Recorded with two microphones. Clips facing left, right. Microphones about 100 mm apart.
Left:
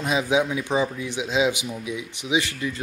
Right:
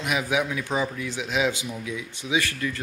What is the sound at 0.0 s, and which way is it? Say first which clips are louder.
Speech: left 3 dB; 25° left (ahead or behind).